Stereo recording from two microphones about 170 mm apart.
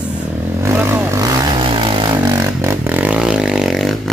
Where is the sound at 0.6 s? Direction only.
15° right (ahead or behind).